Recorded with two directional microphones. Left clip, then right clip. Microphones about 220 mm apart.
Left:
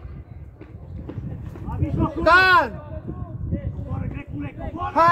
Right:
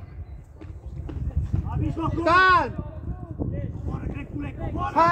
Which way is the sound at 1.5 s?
45° right (ahead or behind).